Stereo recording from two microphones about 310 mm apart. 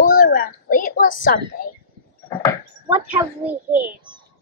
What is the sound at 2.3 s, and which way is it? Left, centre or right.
Dog, centre.